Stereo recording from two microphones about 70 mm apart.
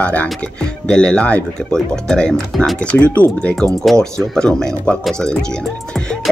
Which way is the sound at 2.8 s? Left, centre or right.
Centre.